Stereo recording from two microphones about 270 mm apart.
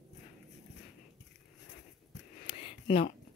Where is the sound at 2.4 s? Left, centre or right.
Centre.